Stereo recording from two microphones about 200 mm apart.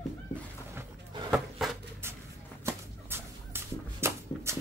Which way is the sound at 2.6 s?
10° right (ahead or behind).